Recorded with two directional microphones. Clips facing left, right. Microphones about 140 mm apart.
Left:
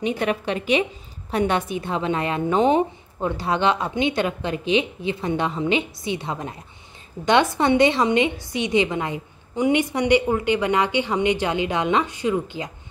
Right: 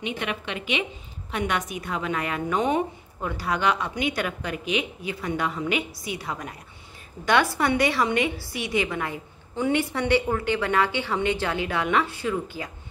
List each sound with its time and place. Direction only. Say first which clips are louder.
0.0 s a woman's voice: left 7 dB; 35° left (ahead or behind); by 12.7 s 20° left (ahead or behind)